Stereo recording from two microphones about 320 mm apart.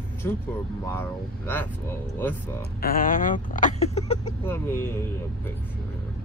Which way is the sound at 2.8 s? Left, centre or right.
Left.